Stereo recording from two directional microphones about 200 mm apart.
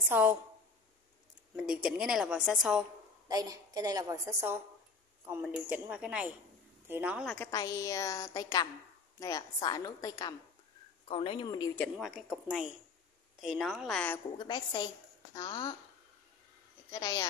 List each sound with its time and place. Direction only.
0.1 s a woman's voice: 10° right (ahead or behind)
1.6 s a woman's voice: centre (ahead or behind)
3.3 s a woman's voice: 20° right (ahead or behind)
7.3 s a woman's voice: 15° left (ahead or behind)
11.7 s a woman's voice: 5° left (ahead or behind)
14.4 s speech: 20° left (ahead or behind)
16.9 s a woman's voice: 15° left (ahead or behind)